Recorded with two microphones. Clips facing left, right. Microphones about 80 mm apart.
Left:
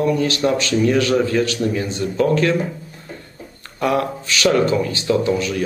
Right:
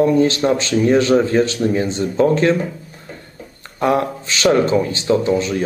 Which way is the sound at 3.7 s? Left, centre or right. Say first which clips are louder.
Right 2 dB; right.